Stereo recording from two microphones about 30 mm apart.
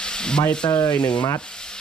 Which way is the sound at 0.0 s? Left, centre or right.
Left.